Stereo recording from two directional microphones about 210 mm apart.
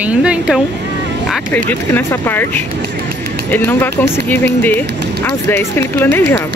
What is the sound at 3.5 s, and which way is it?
Speech, 10° left (ahead or behind).